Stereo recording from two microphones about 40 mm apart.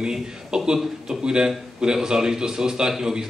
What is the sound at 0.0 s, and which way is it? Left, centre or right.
A man's voice, centre.